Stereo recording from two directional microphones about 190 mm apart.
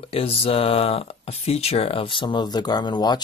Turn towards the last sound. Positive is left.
turn(degrees=20)  # may be behind; listen again after turning